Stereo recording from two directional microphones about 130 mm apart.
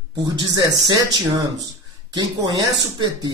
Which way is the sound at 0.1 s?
35° right (ahead or behind).